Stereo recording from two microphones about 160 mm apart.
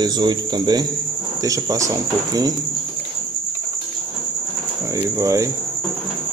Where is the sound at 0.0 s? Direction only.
25° right (ahead or behind).